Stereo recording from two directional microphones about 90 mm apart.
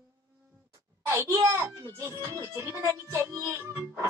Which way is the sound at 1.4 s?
35° right (ahead or behind).